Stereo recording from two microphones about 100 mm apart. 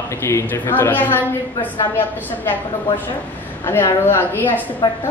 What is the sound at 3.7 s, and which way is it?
Speech, 25° left (ahead or behind).